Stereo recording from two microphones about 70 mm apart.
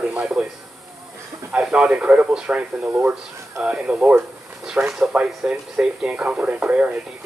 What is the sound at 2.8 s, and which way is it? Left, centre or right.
Speech, right.